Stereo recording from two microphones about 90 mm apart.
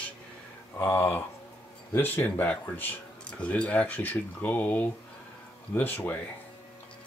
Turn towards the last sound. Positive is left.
turn(degrees=20)  # may be behind; listen again after turning